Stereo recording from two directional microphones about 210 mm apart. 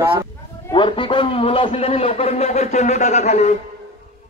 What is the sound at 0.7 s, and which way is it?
A man's voice, 25° left (ahead or behind).